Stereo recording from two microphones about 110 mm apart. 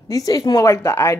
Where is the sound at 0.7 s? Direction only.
25° left (ahead or behind).